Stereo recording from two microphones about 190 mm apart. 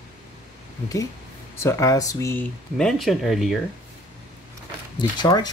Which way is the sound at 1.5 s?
15° left (ahead or behind).